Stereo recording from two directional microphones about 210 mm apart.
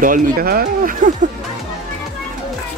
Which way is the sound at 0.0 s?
40° right (ahead or behind).